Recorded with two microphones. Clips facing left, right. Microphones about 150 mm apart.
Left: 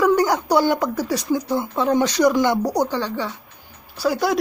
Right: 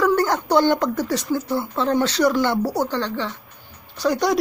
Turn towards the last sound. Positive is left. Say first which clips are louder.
# even
turn(degrees=5)  # may be behind; listen again after turning